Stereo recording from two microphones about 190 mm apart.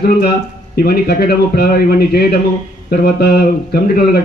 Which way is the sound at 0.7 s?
55° left (ahead or behind).